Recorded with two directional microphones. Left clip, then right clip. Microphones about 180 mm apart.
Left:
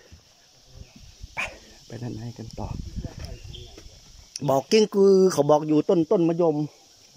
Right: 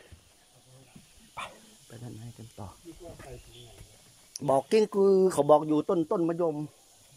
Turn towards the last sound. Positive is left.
turn(degrees=15)  # may be behind; listen again after turning